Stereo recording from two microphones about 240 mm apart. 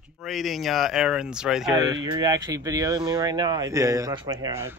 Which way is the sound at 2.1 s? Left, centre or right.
Centre.